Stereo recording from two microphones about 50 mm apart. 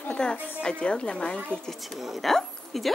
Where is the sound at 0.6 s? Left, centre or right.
Centre.